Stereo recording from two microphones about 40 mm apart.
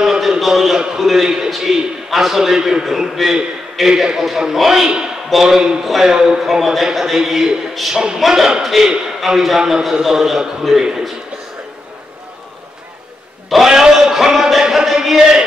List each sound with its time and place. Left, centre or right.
0.0 s a sound: centre
0.7 s a man's voice: centre
7.9 s a man's voice: centre
8.6 s a man's voice: centre
9.6 s a man's voice: centre
13.7 s a man's voice: centre
14.6 s music: centre
15.0 s a man's voice: centre